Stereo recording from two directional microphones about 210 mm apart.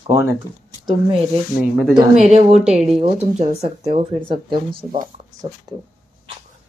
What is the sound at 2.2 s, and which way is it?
A woman's voice, 30° right (ahead or behind).